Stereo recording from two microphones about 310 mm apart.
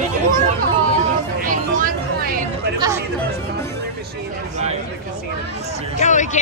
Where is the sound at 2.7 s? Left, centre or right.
Centre.